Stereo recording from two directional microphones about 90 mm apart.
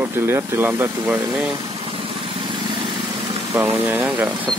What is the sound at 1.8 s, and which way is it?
Vehicle, 80° right.